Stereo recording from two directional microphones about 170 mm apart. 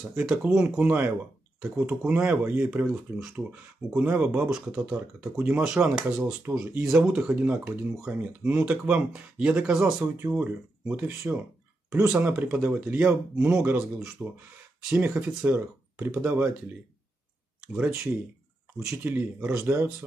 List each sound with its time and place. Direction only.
0.1 s speech: 5° right (ahead or behind)
18.9 s speech: 10° right (ahead or behind)